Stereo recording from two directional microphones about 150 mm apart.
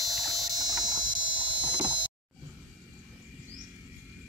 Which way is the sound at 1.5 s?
30° right (ahead or behind).